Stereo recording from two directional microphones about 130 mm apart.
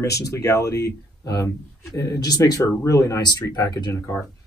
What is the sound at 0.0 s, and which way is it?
Speech, 25° left (ahead or behind).